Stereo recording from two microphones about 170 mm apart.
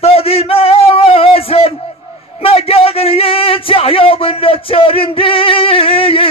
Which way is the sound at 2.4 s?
35° left (ahead or behind).